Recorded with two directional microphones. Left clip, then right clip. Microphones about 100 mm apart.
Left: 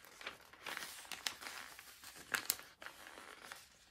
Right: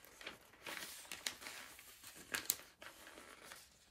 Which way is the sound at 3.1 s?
50° left (ahead or behind).